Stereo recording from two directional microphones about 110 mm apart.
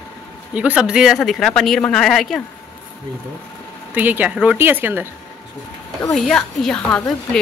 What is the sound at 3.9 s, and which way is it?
Speech, 15° right (ahead or behind).